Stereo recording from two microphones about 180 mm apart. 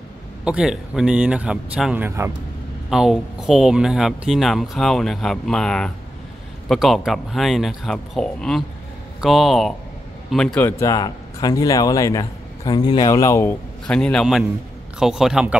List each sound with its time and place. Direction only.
0.5 s speech: 5° right (ahead or behind)
10.8 s a man's voice: 20° left (ahead or behind)
13.8 s speech: 5° left (ahead or behind)